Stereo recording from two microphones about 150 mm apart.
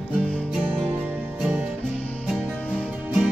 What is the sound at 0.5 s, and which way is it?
Music, 5° right (ahead or behind).